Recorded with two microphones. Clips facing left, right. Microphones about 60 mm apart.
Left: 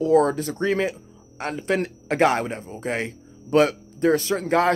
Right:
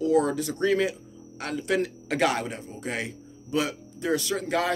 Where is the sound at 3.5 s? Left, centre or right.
Left.